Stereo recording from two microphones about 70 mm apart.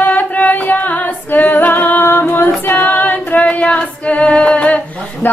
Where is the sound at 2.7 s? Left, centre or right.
Left.